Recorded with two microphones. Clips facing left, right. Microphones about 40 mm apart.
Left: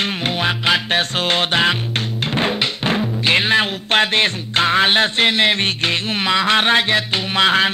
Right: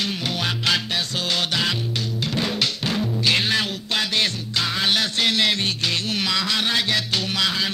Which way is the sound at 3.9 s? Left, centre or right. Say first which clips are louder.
Left 7 dB; left.